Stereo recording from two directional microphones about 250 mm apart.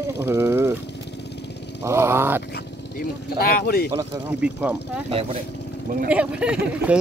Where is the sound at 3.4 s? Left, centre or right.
Left.